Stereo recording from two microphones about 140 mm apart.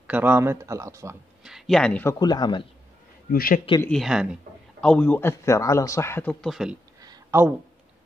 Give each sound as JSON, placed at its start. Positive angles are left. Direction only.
{"t": 0.0, "sound": "speech", "side_deg": -10}
{"t": 1.4, "sound": "speech", "side_deg": 0}
{"t": 2.0, "sound": "speech", "side_deg": 30}
{"t": 3.3, "sound": "a man's voice", "side_deg": 90}
{"t": 3.9, "sound": "speech", "side_deg": 0}
{"t": 4.8, "sound": "a man's voice", "side_deg": 10}
{"t": 6.4, "sound": "speech", "side_deg": -5}
{"t": 7.0, "sound": "a sound", "side_deg": -25}